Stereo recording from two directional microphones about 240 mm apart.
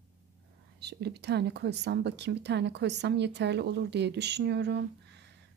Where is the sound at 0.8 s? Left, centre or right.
Right.